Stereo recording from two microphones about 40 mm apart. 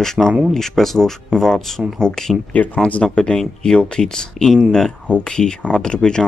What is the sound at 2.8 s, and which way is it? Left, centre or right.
Speech, left.